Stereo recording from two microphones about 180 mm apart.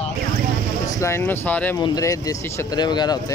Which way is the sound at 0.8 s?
15° left (ahead or behind).